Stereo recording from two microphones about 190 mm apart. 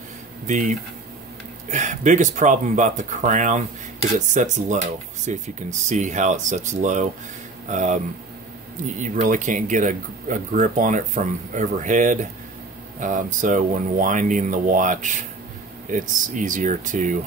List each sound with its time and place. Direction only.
0.5 s speech: 40° right (ahead or behind)
9.0 s speech: 40° right (ahead or behind)